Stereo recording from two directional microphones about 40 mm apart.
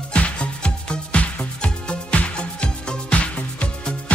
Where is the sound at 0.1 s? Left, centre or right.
Left.